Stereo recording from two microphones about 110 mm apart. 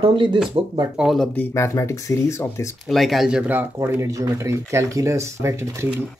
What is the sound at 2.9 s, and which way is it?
Speech, centre (ahead or behind).